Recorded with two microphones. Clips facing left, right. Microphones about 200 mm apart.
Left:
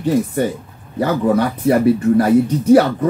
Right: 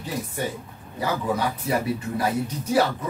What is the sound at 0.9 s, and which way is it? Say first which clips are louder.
Speech: left 10 dB; 60° left (ahead or behind).